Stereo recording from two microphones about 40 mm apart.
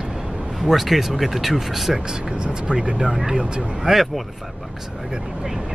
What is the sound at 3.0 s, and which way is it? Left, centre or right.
Speech, centre.